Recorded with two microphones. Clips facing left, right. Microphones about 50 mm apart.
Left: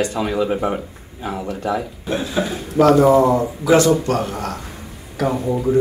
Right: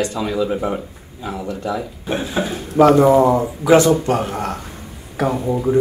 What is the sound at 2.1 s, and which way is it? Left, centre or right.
Speech, right.